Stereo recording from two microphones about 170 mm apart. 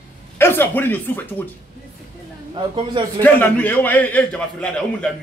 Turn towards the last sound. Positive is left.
turn(degrees=5)  # may be behind; listen again after turning